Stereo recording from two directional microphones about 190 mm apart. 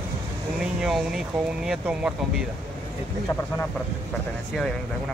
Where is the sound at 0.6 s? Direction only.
5° right (ahead or behind).